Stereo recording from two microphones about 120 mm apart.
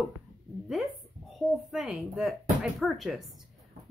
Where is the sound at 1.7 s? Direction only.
5° right (ahead or behind).